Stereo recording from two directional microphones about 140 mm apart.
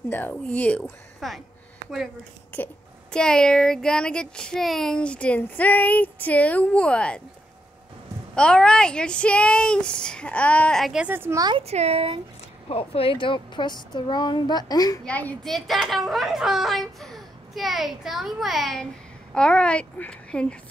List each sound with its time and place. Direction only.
0.1 s speech: 10° left (ahead or behind)
2.5 s speech: 10° left (ahead or behind)
8.4 s speech: 5° left (ahead or behind); by 11.4 s 15° right (ahead or behind)
11.6 s speech: 50° right (ahead or behind)
12.6 s speech: 40° left (ahead or behind)
15.0 s speech: 10° left (ahead or behind)